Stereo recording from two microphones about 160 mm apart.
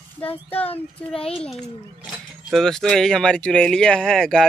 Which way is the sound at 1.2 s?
35° left (ahead or behind).